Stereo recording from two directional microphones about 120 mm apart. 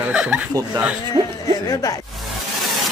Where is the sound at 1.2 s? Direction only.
35° right (ahead or behind).